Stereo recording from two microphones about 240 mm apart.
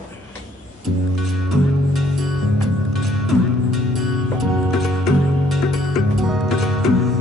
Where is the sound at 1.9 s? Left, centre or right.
Centre.